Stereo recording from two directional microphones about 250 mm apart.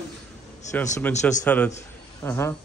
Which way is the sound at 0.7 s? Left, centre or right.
Centre.